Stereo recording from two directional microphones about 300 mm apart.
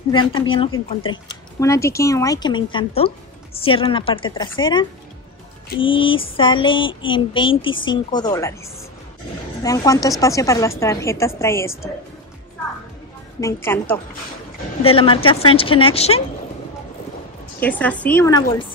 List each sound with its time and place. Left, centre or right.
0.1 s a woman's voice: centre
9.6 s a woman's voice: centre
13.4 s a woman's voice: centre
14.8 s speech: centre
17.6 s a woman's voice: centre